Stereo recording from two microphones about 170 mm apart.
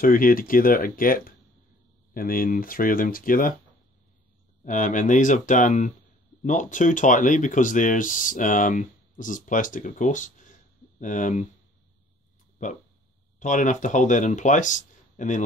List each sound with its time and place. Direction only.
0.0 s speech: 55° left (ahead or behind)
4.6 s speech: 50° left (ahead or behind)
12.6 s speech: 45° left (ahead or behind)